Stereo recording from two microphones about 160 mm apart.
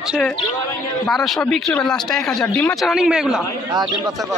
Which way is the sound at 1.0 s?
Centre (ahead or behind).